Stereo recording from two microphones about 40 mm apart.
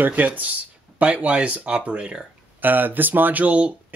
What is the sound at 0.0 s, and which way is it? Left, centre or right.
Speech, right.